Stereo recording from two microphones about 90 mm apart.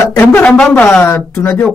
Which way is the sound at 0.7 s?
10° left (ahead or behind).